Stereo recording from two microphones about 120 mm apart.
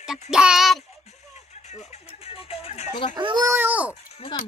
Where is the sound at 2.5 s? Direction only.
55° left (ahead or behind).